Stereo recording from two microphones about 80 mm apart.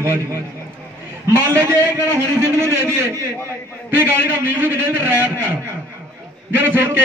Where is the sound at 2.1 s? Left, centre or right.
Right.